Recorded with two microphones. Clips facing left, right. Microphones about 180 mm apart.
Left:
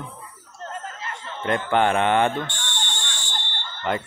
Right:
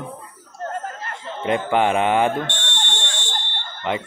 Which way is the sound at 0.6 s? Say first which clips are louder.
Right 5 dB; 50° right (ahead or behind).